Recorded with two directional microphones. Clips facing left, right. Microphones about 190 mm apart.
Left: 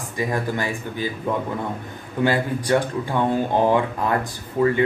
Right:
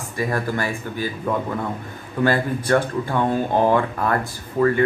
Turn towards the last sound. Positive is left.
turn(degrees=15)  # may be behind; listen again after turning